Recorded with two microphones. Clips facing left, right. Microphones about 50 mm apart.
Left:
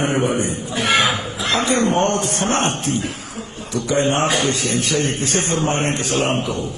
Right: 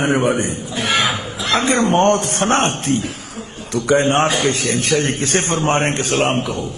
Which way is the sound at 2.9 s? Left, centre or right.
Left.